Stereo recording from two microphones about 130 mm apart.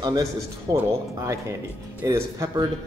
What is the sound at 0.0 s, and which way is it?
Speech, 30° right (ahead or behind).